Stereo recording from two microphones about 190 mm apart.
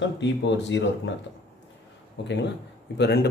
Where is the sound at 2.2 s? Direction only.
65° left (ahead or behind).